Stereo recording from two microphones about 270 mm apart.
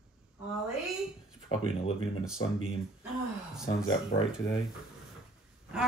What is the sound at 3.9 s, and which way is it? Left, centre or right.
Speech, centre.